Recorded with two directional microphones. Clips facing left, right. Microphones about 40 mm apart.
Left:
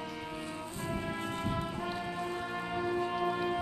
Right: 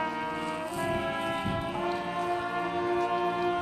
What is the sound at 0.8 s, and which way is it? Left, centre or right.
Brass instrument, right.